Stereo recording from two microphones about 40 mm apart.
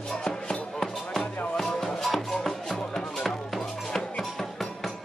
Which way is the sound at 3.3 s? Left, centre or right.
Centre.